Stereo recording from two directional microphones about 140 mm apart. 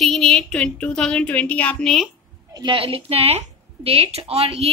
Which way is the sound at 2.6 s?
35° right (ahead or behind).